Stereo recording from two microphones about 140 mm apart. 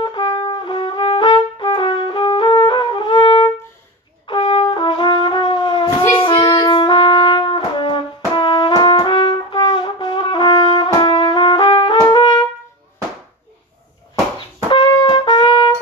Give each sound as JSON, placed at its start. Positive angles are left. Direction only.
{"t": 0.0, "sound": "trumpet", "side_deg": 35}
{"t": 4.3, "sound": "brass instrument", "side_deg": 35}
{"t": 6.1, "sound": "music", "side_deg": 35}
{"t": 12.1, "sound": "trumpet", "side_deg": 30}
{"t": 14.7, "sound": "trumpet", "side_deg": 35}